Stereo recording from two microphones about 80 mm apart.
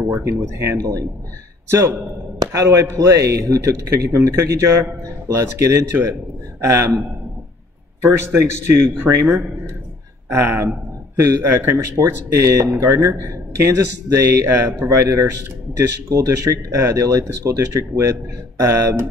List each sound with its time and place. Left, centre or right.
0.1 s a man's voice: right
2.3 s a man's voice: right
8.0 s a man's voice: right
10.3 s a man's voice: right
12.0 s a man's voice: right